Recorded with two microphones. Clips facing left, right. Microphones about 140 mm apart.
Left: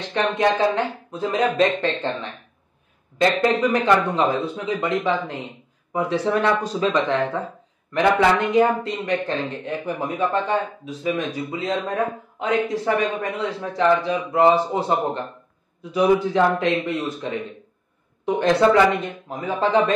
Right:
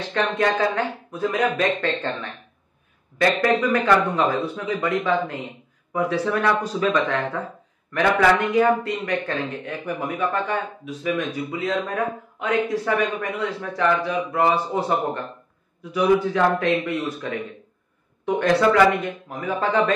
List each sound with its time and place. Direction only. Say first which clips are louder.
0.1 s speech: left 2 dB; 20° left (ahead or behind)
3.2 s speech: left 1 dB; 20° left (ahead or behind)